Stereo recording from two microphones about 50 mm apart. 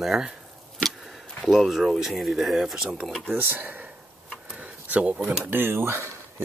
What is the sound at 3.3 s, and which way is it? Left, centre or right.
Speech, right.